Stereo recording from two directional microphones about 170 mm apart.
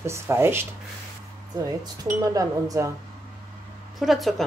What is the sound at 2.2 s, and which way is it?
Speech, 20° right (ahead or behind).